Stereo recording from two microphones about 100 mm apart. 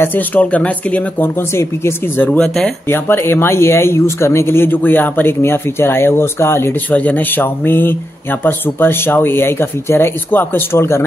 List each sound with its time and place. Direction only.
0.0 s speech: 20° left (ahead or behind)
1.5 s speech: 25° left (ahead or behind); by 2.7 s 10° left (ahead or behind)
2.9 s speech: 25° left (ahead or behind)